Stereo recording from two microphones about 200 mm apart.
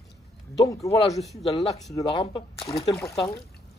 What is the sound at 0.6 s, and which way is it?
A man's voice, 15° left (ahead or behind).